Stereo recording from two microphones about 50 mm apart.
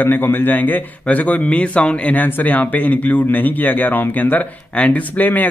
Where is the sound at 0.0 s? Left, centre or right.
Left.